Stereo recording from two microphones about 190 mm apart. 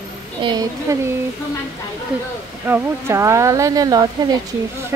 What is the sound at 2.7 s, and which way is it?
A woman's voice, 15° right (ahead or behind).